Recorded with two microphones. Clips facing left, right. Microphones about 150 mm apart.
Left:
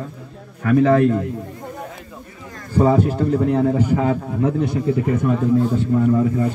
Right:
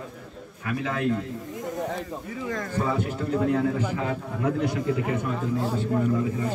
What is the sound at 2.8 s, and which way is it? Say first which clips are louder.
Speech: left 13 dB; 50° left (ahead or behind).